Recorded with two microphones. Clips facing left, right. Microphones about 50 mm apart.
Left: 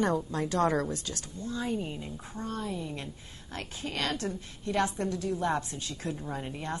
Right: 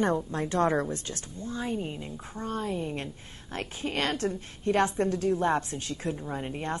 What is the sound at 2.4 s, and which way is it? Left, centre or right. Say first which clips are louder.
A woman's voice: right 4 dB; right.